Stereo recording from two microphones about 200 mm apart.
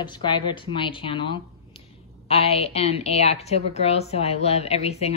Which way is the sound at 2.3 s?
30° left (ahead or behind).